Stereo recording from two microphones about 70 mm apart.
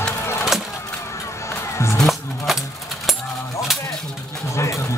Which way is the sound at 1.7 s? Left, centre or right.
Left.